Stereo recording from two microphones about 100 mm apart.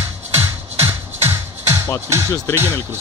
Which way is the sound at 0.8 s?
25° right (ahead or behind).